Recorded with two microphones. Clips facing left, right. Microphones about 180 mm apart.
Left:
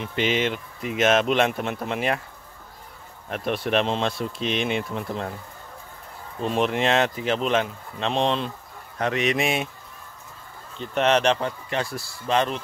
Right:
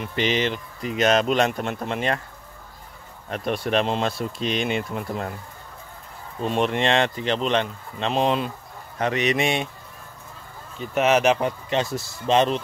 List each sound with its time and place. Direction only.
0.0 s speech: centre (ahead or behind)
3.3 s speech: centre (ahead or behind)
6.4 s speech: centre (ahead or behind)
10.8 s speech: 5° right (ahead or behind)